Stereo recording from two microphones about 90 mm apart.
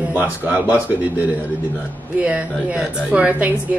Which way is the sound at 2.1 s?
15° right (ahead or behind).